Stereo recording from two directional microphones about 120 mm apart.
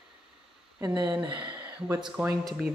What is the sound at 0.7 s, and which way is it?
Speech, 35° right (ahead or behind).